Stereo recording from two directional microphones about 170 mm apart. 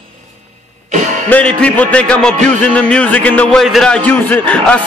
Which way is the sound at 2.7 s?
5° left (ahead or behind).